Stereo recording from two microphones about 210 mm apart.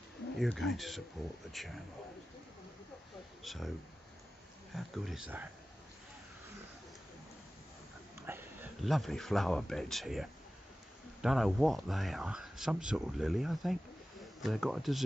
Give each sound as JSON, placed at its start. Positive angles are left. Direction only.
{"t": 0.4, "sound": "speech", "side_deg": 0}
{"t": 3.4, "sound": "speech", "side_deg": 0}
{"t": 4.7, "sound": "speech", "side_deg": 0}
{"t": 8.3, "sound": "a sound", "side_deg": -10}
{"t": 8.8, "sound": "speech", "side_deg": 0}